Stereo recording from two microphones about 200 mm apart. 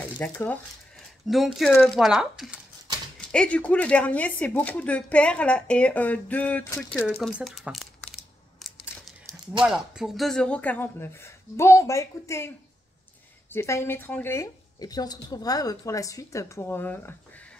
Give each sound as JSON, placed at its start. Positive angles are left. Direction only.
{"t": 0.2, "sound": "a woman's voice", "side_deg": 10}